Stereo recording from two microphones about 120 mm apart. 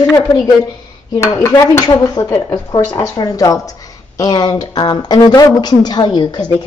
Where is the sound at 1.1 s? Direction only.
25° left (ahead or behind).